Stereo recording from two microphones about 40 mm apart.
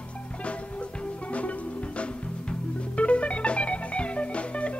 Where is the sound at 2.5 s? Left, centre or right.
Left.